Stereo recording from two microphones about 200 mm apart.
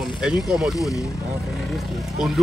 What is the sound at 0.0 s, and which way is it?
Speech, 5° right (ahead or behind).